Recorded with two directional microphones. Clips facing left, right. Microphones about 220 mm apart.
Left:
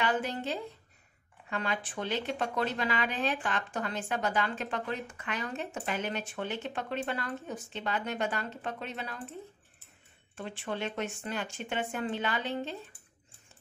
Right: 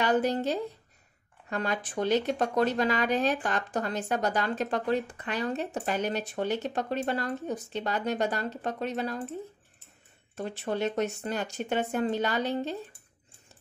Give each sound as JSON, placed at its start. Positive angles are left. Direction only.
{"t": 0.0, "sound": "speech", "side_deg": -40}
{"t": 10.3, "sound": "speech", "side_deg": -40}